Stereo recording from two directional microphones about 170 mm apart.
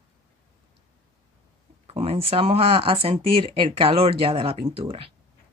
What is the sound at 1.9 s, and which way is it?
Speech, 35° right (ahead or behind).